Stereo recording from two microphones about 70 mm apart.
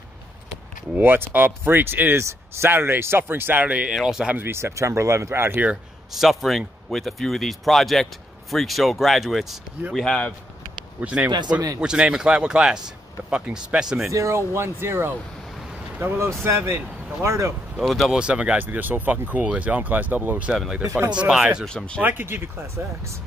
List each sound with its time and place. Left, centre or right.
0.9 s speech: right
3.9 s speech: centre
4.3 s speech: right
6.1 s speech: centre
9.9 s speech: centre
11.0 s speech: centre
11.2 s speech: right
11.8 s speech: centre
14.1 s speech: right
17.7 s speech: centre
18.1 s speech: centre
21.6 s speech: centre
22.0 s speech: right